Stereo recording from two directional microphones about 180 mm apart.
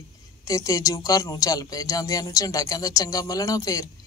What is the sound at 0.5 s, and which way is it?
Speech, 20° left (ahead or behind).